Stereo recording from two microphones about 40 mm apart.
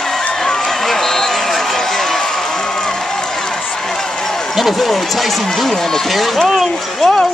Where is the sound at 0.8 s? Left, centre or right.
Centre.